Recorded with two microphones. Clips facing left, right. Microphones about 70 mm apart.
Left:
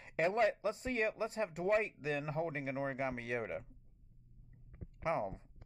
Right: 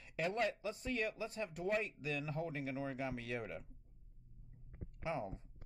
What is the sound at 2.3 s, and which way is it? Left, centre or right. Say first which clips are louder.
Speech: left 3 dB; left.